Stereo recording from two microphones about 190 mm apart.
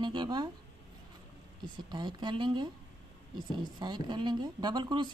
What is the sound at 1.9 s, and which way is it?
Speech, 25° right (ahead or behind).